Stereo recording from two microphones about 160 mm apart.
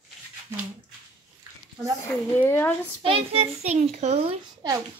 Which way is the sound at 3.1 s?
40° right (ahead or behind).